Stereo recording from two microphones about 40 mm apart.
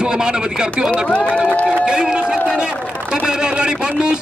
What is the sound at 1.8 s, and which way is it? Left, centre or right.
A man's voice, right.